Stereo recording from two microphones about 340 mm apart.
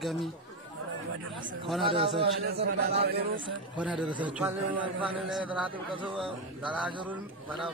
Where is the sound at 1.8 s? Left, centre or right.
Centre.